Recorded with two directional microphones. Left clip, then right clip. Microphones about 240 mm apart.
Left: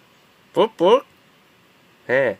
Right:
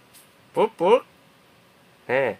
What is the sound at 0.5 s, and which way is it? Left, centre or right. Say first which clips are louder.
Speech: left 3 dB; centre.